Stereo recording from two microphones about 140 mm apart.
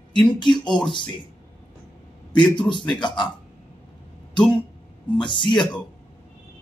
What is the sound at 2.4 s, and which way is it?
Speech, 35° left (ahead or behind).